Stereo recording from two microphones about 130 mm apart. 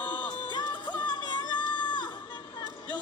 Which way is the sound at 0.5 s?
35° left (ahead or behind).